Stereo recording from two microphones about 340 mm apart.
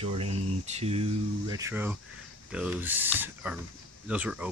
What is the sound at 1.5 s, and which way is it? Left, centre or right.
Speech, centre.